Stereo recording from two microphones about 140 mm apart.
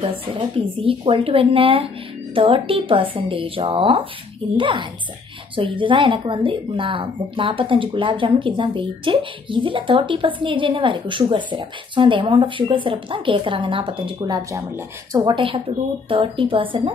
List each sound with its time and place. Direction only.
0.7 s speech: 40° right (ahead or behind)